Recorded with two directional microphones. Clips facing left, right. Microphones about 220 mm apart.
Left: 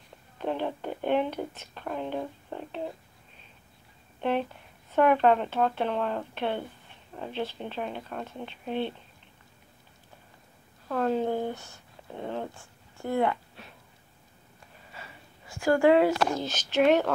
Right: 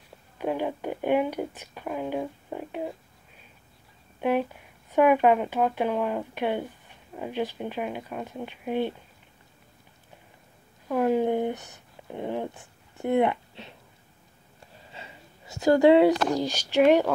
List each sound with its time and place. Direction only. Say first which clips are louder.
0.4 s speech: right 2 dB; 10° right (ahead or behind)
4.2 s speech: right 3 dB; 10° right (ahead or behind)
10.9 s speech: right 4 dB; 15° right (ahead or behind)
14.9 s speech: right 2 dB; 25° right (ahead or behind)